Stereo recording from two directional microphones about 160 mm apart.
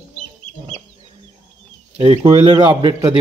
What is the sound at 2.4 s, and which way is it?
Speech, 35° right (ahead or behind).